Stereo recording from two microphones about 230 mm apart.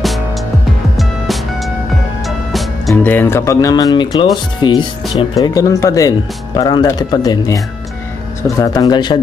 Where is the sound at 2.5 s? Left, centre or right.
Centre.